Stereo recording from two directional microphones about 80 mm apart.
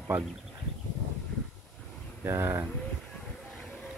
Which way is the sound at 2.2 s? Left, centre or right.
Right.